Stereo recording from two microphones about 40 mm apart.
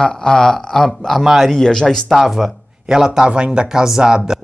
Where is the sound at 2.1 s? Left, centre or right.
Centre.